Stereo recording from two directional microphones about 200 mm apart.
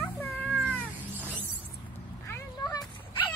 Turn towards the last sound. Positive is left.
turn(degrees=20)  # may be behind; listen again after turning